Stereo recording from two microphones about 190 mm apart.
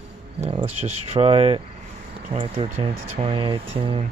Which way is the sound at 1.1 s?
30° right (ahead or behind).